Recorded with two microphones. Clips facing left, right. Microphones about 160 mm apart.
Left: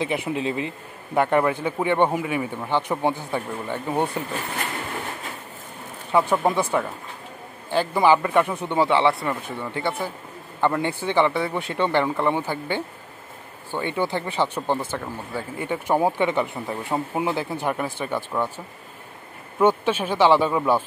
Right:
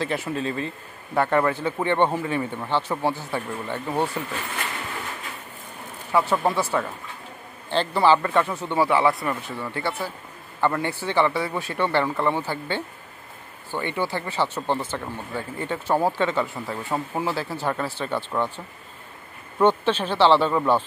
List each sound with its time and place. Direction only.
0.0 s speech: 15° left (ahead or behind)
6.1 s speech: 15° left (ahead or behind)
19.6 s speech: 10° left (ahead or behind)